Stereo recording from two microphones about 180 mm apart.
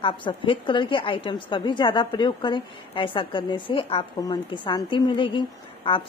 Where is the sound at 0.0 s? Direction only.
30° left (ahead or behind).